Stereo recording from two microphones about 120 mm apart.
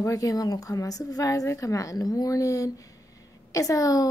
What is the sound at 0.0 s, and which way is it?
A woman's voice, 30° left (ahead or behind).